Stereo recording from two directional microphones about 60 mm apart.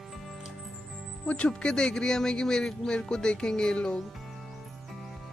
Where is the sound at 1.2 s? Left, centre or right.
Centre.